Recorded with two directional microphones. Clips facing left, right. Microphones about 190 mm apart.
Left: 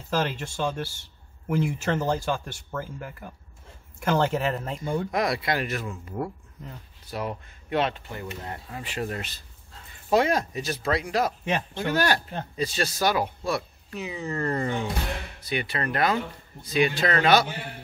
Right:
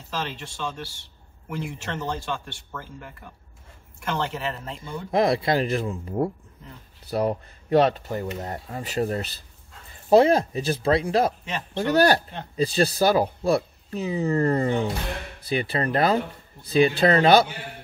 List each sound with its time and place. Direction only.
0.1 s speech: 50° left (ahead or behind)
4.0 s speech: 45° left (ahead or behind)
5.1 s speech: 30° right (ahead or behind)